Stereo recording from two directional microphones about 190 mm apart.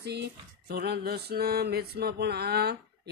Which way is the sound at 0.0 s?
60° right (ahead or behind).